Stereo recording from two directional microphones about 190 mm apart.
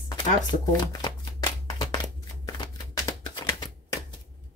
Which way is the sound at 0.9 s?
20° left (ahead or behind).